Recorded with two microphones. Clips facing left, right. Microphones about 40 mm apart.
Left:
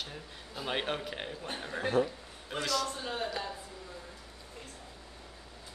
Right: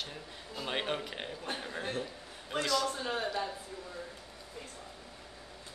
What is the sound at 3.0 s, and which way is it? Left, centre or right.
Speech, right.